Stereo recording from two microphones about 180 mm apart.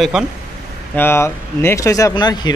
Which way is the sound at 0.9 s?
15° left (ahead or behind).